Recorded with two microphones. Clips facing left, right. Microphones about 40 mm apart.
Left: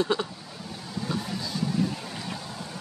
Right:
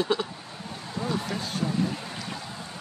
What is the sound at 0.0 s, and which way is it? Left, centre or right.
Speech, centre.